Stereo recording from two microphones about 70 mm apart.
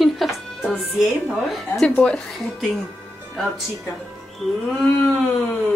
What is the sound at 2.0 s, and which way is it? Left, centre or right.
Speech, centre.